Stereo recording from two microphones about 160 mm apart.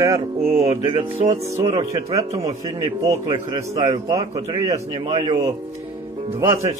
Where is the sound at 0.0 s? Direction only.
20° right (ahead or behind).